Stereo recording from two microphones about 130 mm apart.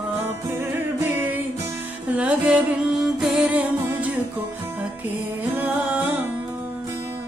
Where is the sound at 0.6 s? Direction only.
15° right (ahead or behind).